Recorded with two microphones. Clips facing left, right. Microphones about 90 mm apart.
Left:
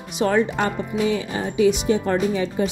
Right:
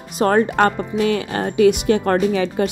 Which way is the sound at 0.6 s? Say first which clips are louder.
Right 5 dB; 65° right (ahead or behind).